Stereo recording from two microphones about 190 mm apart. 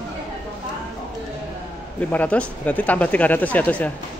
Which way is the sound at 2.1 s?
5° left (ahead or behind).